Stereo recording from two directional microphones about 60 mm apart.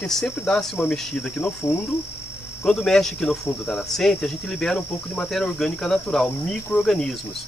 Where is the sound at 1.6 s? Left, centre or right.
Left.